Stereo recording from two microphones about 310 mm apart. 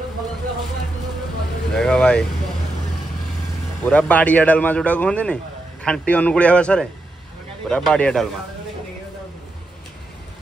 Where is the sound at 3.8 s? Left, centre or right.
Centre.